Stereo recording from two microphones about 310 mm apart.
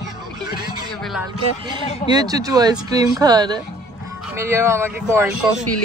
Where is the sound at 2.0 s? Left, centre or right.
Centre.